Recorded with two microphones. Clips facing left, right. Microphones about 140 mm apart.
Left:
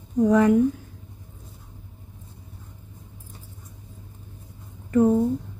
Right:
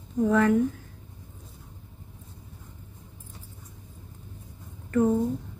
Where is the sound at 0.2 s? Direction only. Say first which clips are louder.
Left 4 dB; 15° left (ahead or behind).